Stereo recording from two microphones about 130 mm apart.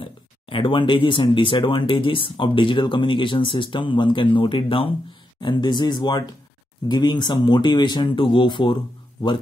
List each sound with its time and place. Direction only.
0.0 s speech: 40° left (ahead or behind)